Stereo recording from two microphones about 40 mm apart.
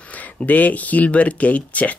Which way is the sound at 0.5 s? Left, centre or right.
Left.